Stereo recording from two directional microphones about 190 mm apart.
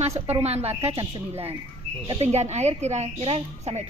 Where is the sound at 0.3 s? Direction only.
35° right (ahead or behind).